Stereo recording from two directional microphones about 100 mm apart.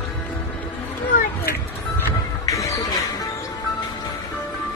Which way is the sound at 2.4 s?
30° left (ahead or behind).